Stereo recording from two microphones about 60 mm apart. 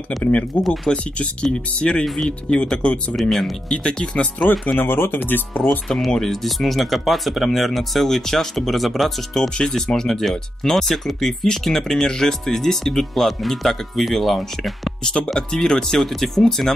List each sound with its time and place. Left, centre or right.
0.2 s speech: left
3.2 s speech: centre
3.6 s speech: centre
4.7 s speech: left
5.9 s speech: centre